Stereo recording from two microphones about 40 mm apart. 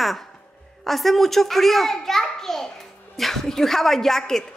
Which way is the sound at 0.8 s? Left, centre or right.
Centre.